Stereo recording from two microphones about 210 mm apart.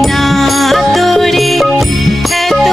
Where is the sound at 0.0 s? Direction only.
Centre (ahead or behind).